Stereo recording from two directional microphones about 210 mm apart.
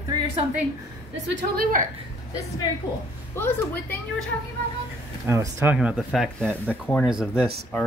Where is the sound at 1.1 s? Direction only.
60° right (ahead or behind).